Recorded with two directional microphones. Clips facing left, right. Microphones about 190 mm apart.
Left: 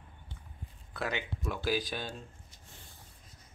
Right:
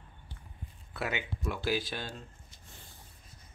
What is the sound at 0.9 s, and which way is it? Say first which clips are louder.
Speech: even; 5° right (ahead or behind).